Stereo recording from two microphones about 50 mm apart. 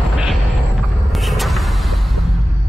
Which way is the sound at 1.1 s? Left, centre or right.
Centre.